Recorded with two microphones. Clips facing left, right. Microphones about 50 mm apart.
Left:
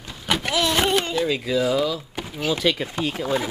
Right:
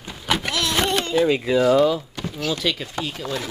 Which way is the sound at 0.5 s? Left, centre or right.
Centre.